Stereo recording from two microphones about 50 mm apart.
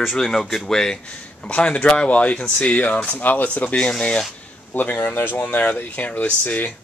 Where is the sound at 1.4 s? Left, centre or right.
Left.